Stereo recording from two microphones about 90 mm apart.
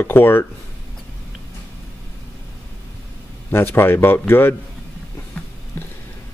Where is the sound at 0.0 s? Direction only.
25° left (ahead or behind).